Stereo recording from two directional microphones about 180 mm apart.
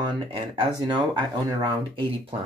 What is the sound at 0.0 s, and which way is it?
Speech, 30° right (ahead or behind).